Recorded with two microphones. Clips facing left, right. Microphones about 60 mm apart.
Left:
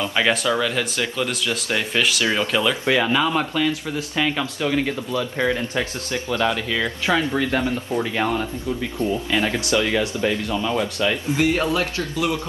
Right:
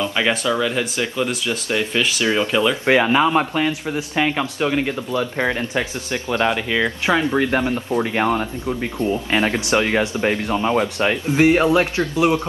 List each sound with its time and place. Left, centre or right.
0.1 s speech: centre
0.6 s speech: centre
2.8 s speech: right